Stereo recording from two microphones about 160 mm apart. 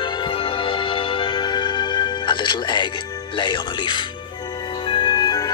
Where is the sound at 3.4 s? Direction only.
30° left (ahead or behind).